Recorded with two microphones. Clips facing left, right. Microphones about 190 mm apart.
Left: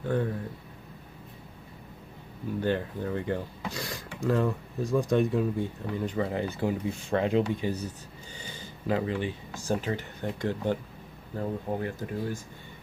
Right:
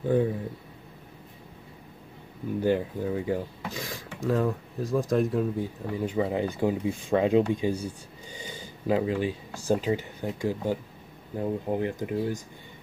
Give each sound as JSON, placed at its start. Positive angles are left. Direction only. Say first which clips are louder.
{"t": 0.0, "sound": "speech", "louder": "right 5 dB", "side_deg": -15}
{"t": 2.6, "sound": "speech", "louder": "right 4 dB", "side_deg": -10}